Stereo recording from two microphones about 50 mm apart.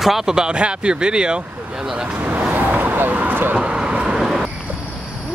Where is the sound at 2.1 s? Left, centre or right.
Right.